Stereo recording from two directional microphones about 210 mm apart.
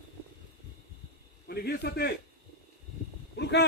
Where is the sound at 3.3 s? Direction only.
55° left (ahead or behind).